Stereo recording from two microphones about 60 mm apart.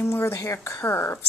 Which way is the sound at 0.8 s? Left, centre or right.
Left.